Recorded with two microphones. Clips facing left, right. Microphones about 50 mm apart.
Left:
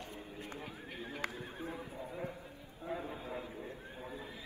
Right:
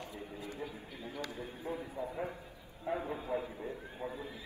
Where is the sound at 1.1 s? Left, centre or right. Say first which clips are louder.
Even; left.